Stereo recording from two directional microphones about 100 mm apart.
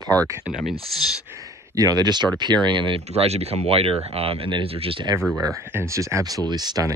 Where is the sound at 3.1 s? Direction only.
90° right; by 5.0 s 70° right (ahead or behind).